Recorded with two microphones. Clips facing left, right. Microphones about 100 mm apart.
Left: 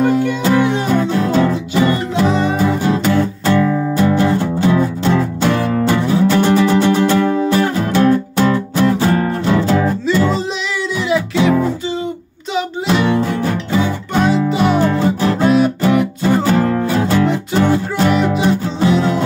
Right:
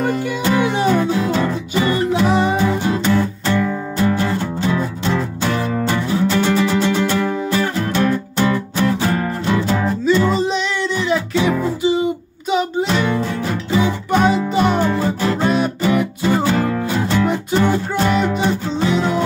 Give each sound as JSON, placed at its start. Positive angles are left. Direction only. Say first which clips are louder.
{"t": 0.0, "sound": "music", "louder": "left 5 dB", "side_deg": 0}
{"t": 9.6, "sound": "music", "louder": "left 4 dB", "side_deg": 10}
{"t": 9.8, "sound": "music", "louder": "even", "side_deg": 0}
{"t": 11.8, "sound": "music", "louder": "right 5 dB", "side_deg": -15}
{"t": 12.5, "sound": "music", "louder": "left 1 dB", "side_deg": 0}
{"t": 13.5, "sound": "music", "louder": "left 1 dB", "side_deg": -5}
{"t": 14.8, "sound": "music", "louder": "left 3 dB", "side_deg": -10}
{"t": 15.2, "sound": "music", "louder": "left 5 dB", "side_deg": 5}